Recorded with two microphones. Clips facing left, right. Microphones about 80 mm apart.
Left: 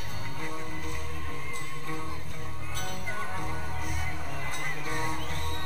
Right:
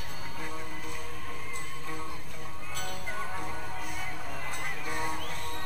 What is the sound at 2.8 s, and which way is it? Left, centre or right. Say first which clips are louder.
Music: left 1 dB; centre.